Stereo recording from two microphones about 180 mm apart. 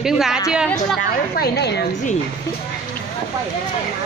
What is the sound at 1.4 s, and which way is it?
Speech, 65° left (ahead or behind).